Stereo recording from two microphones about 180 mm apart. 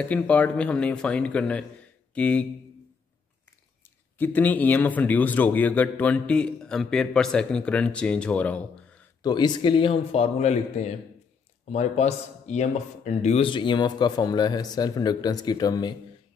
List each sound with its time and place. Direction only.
0.0 s speech: 10° left (ahead or behind)
3.8 s speech: 10° left (ahead or behind)
9.2 s speech: 25° left (ahead or behind)